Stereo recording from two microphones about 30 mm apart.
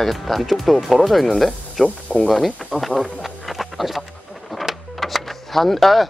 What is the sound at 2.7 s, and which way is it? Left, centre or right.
Speech, centre.